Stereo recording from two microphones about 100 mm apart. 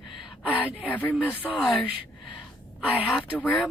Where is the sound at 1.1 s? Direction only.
15° right (ahead or behind).